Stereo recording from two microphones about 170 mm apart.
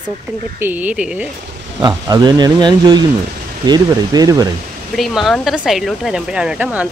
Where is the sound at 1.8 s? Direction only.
25° right (ahead or behind).